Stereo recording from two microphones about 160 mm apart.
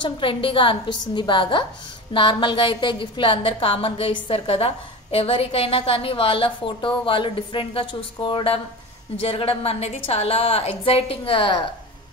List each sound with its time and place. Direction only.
0.0 s a woman's voice: 30° left (ahead or behind)